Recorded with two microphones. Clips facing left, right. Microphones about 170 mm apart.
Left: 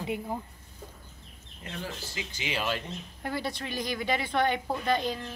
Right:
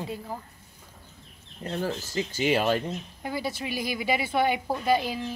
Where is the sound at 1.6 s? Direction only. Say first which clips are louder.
Right 8 dB; 40° right (ahead or behind).